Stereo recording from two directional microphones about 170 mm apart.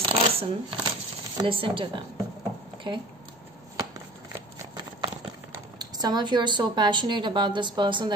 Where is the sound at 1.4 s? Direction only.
30° right (ahead or behind).